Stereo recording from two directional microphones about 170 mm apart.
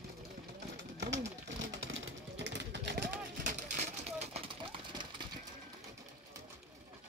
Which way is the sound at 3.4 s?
45° right (ahead or behind).